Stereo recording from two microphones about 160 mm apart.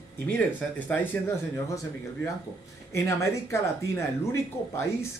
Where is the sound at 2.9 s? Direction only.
15° left (ahead or behind).